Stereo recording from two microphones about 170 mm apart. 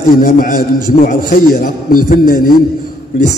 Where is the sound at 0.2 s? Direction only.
55° left (ahead or behind).